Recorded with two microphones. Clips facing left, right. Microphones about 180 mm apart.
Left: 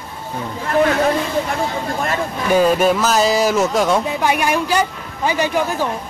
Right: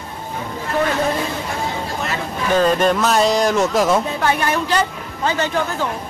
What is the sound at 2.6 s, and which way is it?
Music, 5° left (ahead or behind).